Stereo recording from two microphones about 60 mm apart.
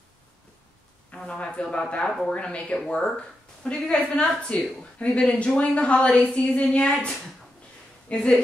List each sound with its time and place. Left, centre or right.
1.1 s speech: centre